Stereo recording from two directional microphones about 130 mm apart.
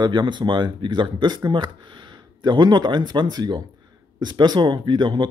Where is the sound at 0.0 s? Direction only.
35° right (ahead or behind).